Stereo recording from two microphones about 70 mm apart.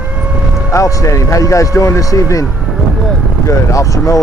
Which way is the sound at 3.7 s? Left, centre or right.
Left.